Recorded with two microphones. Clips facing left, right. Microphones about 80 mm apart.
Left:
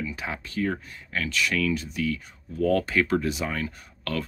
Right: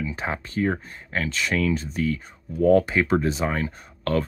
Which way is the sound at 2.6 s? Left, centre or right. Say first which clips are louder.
Right 5 dB; right.